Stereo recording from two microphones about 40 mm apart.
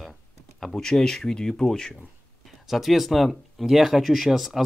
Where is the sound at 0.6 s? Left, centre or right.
Centre.